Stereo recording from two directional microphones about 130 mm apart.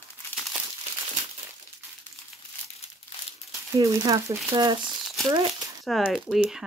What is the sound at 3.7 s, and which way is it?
Speech, 25° right (ahead or behind).